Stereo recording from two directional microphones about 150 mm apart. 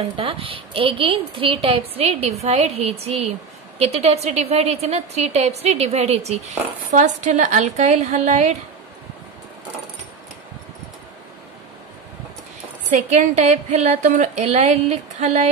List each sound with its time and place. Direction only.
0.1 s a woman's voice: 35° right (ahead or behind)
13.1 s a woman's voice: 50° right (ahead or behind)